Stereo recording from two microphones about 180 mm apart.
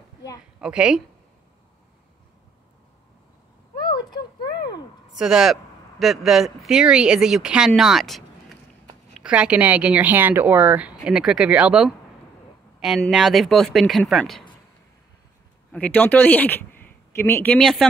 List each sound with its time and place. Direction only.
0.6 s speech: 5° right (ahead or behind)
3.8 s a sound: 25° left (ahead or behind)
5.1 s speech: centre (ahead or behind)
9.2 s speech: 5° right (ahead or behind)
15.7 s speech: 10° left (ahead or behind)